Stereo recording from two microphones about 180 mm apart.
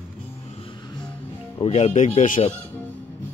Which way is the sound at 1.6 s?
35° left (ahead or behind).